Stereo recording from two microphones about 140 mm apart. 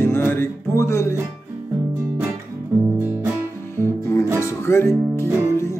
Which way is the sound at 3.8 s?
20° left (ahead or behind).